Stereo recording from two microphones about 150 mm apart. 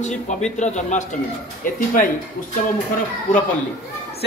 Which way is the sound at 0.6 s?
50° left (ahead or behind).